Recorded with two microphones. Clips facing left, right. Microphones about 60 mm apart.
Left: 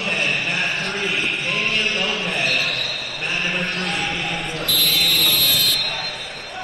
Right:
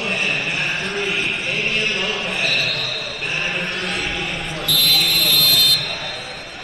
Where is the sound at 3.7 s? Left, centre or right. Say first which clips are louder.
Even; left.